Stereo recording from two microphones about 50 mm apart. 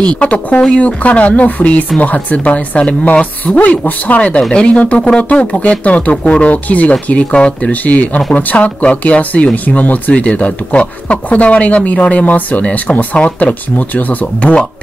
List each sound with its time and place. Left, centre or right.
0.0 s speech: left
4.4 s speech: centre
14.2 s speech: left